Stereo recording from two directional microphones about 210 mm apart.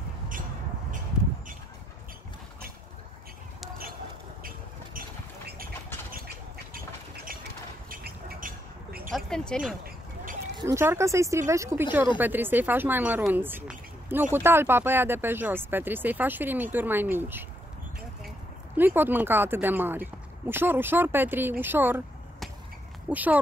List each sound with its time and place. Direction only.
4.4 s vehicle: 45° right (ahead or behind)
7.9 s a sound: 45° right (ahead or behind)
9.1 s speech: 5° left (ahead or behind)
10.7 s speech: 15° right (ahead or behind)
18.8 s speech: 10° right (ahead or behind)
23.0 s speech: 5° right (ahead or behind)